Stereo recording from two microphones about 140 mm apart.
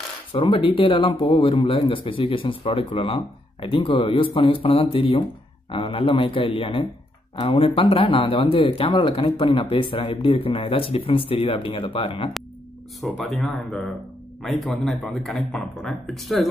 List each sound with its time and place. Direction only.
0.3 s speech: 35° left (ahead or behind)
13.2 s speech: centre (ahead or behind)